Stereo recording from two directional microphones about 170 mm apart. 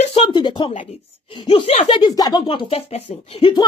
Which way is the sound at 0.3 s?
25° left (ahead or behind).